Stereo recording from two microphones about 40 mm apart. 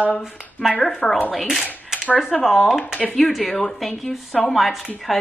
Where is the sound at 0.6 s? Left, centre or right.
Left.